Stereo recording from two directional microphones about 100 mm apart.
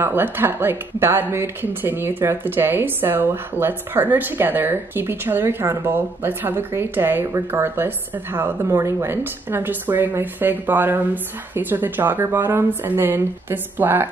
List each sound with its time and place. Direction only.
0.0 s speech: 20° right (ahead or behind)